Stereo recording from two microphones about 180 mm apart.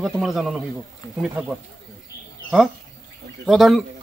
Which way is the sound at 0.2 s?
Centre (ahead or behind).